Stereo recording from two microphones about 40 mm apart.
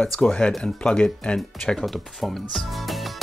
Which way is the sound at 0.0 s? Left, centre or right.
Centre.